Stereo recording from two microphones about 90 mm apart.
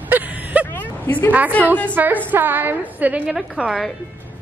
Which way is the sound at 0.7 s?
20° left (ahead or behind).